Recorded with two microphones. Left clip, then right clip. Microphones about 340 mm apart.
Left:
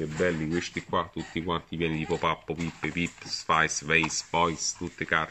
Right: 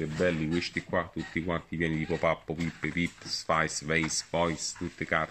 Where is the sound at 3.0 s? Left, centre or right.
Centre.